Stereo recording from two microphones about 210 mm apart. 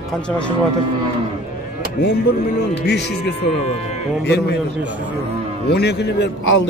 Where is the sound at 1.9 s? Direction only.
55° left (ahead or behind).